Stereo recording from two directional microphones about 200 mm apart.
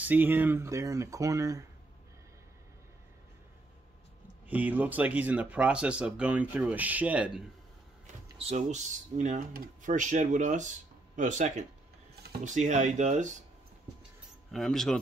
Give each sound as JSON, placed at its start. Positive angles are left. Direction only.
{"t": 0.0, "sound": "speech", "side_deg": -10}
{"t": 4.5, "sound": "speech", "side_deg": -10}
{"t": 8.4, "sound": "speech", "side_deg": -30}
{"t": 14.5, "sound": "speech", "side_deg": 0}